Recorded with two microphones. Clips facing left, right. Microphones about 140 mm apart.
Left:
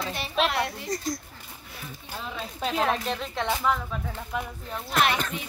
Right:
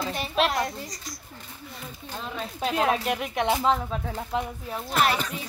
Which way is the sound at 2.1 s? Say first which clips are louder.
Right 1 dB; 5° left (ahead or behind).